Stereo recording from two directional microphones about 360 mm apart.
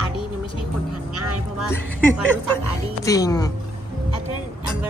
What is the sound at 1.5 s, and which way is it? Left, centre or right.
Speech, centre.